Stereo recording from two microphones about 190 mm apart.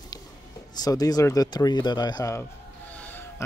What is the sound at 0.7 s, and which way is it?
Speech, 20° left (ahead or behind).